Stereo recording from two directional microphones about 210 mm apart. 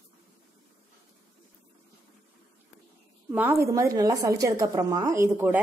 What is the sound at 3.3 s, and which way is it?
A woman's voice, 10° right (ahead or behind).